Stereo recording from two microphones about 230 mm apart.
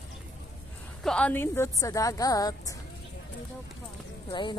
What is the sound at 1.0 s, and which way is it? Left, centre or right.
A woman's voice, centre.